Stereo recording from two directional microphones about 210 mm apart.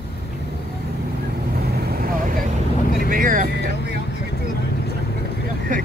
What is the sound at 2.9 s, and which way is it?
Vehicle, 40° right (ahead or behind).